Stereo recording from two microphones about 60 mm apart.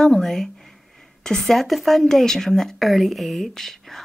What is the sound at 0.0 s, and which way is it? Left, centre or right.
Speech, centre.